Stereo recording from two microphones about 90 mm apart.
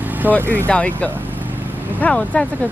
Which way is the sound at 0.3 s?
20° right (ahead or behind).